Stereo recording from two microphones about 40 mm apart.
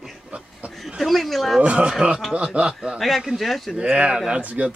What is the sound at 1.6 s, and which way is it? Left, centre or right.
Speech, right.